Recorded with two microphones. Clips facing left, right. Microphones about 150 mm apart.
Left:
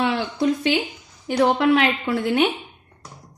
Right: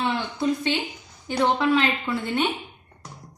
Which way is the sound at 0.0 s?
90° left.